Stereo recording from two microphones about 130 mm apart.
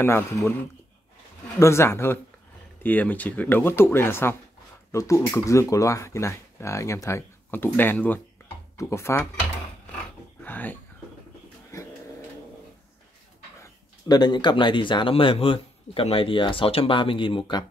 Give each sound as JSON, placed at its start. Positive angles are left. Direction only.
{"t": 0.0, "sound": "speech", "side_deg": 20}
{"t": 1.6, "sound": "speech", "side_deg": 20}
{"t": 10.4, "sound": "a sound", "side_deg": 15}
{"t": 13.6, "sound": "speech", "side_deg": 30}